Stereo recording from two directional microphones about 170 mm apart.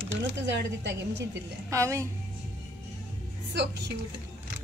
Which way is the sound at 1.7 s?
20° right (ahead or behind).